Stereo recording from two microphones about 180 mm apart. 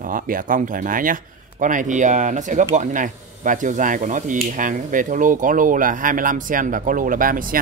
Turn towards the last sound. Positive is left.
turn(degrees=-50)  # may be behind; listen again after turning